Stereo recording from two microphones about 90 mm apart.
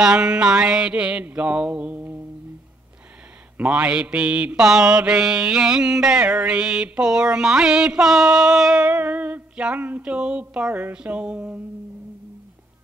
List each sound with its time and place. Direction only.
0.0 s mantra: 10° right (ahead or behind)
3.5 s mantra: 15° right (ahead or behind)
8.9 s mantra: 20° right (ahead or behind)